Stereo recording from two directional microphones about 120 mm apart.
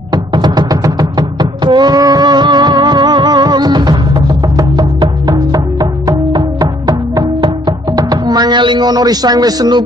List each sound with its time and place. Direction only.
0.1 s music: 35° right (ahead or behind)